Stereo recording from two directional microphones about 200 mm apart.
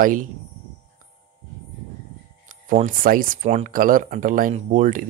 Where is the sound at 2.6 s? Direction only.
40° right (ahead or behind).